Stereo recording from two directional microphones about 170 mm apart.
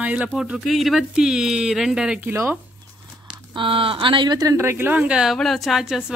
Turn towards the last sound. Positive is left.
turn(degrees=0)  # may be behind; listen again after turning